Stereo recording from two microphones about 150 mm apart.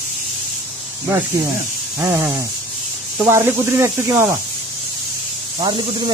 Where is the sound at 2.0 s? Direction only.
15° right (ahead or behind).